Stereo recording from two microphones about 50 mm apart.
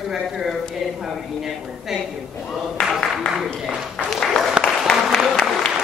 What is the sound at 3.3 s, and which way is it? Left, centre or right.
Speech, centre.